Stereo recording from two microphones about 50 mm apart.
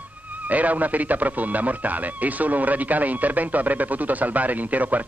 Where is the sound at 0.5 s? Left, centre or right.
Right.